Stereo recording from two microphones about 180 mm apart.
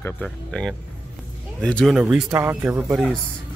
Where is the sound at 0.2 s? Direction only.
5° left (ahead or behind).